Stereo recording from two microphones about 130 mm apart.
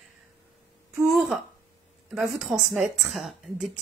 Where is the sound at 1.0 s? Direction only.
Centre (ahead or behind).